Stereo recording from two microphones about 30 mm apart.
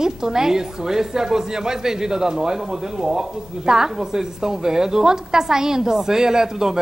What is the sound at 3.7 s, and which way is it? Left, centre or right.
A woman's voice, centre.